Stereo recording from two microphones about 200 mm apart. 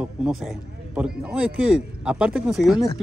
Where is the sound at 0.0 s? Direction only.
5° right (ahead or behind).